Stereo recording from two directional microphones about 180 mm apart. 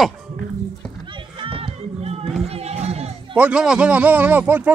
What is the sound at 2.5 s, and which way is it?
Run, 35° right (ahead or behind).